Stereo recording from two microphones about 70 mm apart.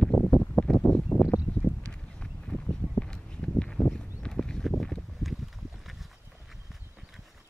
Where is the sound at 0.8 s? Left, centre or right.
Centre.